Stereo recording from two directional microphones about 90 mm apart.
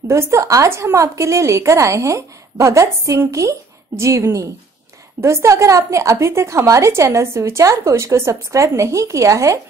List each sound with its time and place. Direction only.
0.1 s a woman's voice: 35° right (ahead or behind)